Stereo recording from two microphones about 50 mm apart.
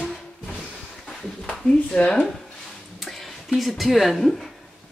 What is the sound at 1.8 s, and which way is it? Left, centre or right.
Speech, left.